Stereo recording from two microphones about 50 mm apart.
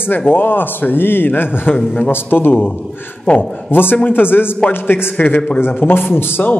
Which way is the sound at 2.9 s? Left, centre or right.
Left.